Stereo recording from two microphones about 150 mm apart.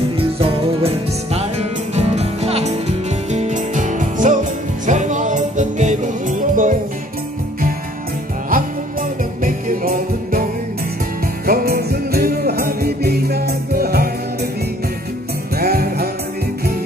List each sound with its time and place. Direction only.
0.4 s music: 40° right (ahead or behind); by 6.7 s 60° right (ahead or behind)
9.4 s music: 65° right (ahead or behind)
11.4 s music: 85° right
15.5 s music: 90° right